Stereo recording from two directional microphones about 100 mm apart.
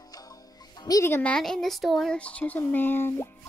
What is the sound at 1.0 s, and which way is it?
Speech, 25° left (ahead or behind).